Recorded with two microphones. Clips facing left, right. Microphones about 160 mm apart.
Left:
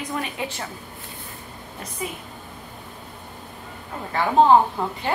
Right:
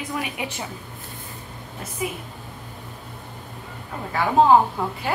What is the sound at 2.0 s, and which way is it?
Speech, 10° right (ahead or behind).